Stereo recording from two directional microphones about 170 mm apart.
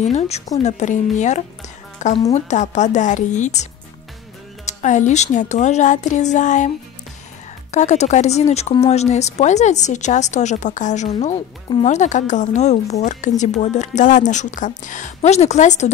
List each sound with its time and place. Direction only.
0.0 s a woman's voice: 40° left (ahead or behind)
4.6 s a woman's voice: 45° left (ahead or behind)
7.7 s a woman's voice: 45° left (ahead or behind)
13.0 s a sound: 45° left (ahead or behind)
13.4 s a woman's voice: 45° left (ahead or behind)